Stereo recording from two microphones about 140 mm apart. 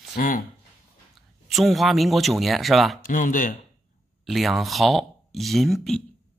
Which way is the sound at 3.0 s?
75° left (ahead or behind).